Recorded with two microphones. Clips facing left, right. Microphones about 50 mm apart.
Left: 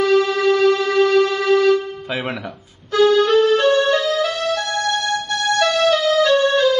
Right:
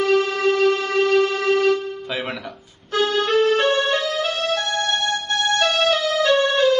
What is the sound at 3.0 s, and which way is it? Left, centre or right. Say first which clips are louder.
Music: left 5 dB; right.